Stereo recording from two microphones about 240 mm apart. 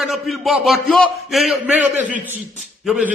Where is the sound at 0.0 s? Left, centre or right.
Centre.